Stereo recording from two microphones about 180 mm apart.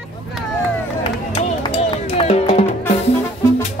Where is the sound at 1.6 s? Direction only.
35° left (ahead or behind).